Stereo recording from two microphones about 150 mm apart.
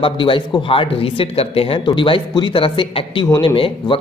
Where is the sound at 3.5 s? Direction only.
35° left (ahead or behind).